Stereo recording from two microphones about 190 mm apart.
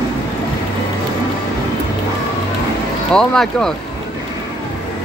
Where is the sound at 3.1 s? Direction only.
5° left (ahead or behind).